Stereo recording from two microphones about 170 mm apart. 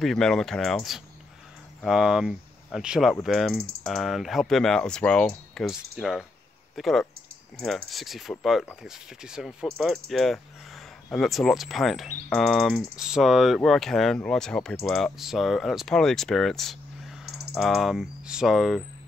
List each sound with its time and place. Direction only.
0.0 s speech: centre (ahead or behind)